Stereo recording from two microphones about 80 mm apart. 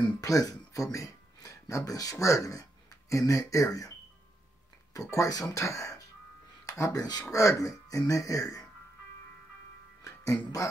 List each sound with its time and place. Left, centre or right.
0.2 s speech: left
4.9 s speech: left
7.3 s speech: left
10.0 s speech: left